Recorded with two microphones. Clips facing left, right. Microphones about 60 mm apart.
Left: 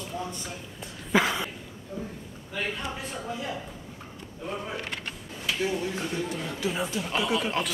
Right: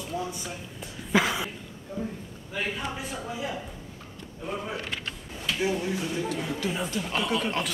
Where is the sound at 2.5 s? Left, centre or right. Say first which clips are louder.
Right 1 dB; centre.